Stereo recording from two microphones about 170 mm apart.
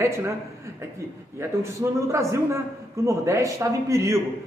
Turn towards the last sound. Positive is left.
turn(degrees=-15)  # may be behind; listen again after turning